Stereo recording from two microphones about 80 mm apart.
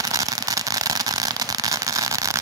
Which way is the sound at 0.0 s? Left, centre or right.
Right.